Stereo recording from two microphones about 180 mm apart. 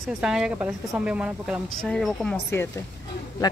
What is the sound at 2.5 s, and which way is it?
Speech, 15° left (ahead or behind).